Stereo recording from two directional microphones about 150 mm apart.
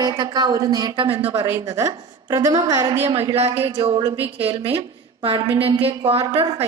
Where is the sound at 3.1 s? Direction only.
40° right (ahead or behind).